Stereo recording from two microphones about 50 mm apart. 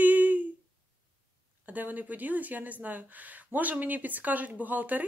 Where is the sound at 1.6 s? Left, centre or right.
Right.